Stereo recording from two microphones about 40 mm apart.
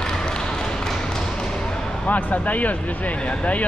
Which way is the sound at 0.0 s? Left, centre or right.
Centre.